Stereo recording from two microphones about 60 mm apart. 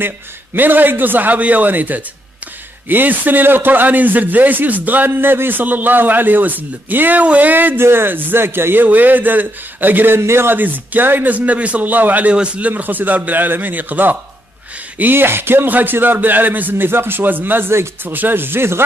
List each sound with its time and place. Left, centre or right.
0.6 s a man's voice: right